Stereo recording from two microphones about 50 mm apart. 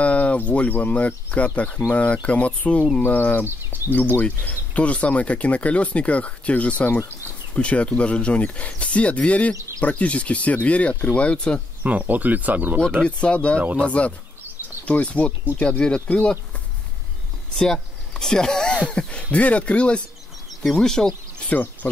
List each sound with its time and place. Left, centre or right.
0.0 s speech: left
3.7 s a sound: right
4.5 s speech: left
11.8 s speech: right
13.0 s speech: left
18.2 s speech: centre
20.7 s speech: centre